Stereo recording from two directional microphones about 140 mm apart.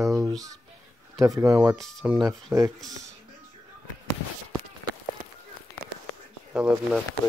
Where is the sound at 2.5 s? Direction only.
15° right (ahead or behind).